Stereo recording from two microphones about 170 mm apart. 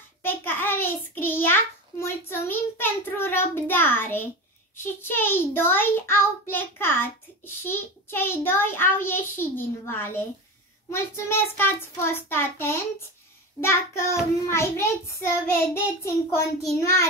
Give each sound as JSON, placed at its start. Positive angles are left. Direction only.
{"t": 0.2, "sound": "child singing", "side_deg": 10}
{"t": 4.7, "sound": "a child's voice", "side_deg": 15}